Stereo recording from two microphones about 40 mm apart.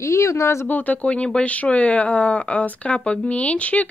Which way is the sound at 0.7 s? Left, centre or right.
Left.